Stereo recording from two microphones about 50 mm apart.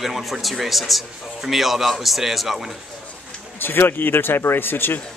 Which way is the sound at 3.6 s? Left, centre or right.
Left.